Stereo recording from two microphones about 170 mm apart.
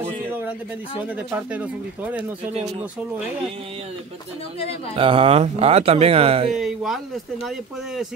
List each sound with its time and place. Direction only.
1.3 s speech: 10° right (ahead or behind)
4.9 s speech: 30° right (ahead or behind)
6.5 s speech: centre (ahead or behind)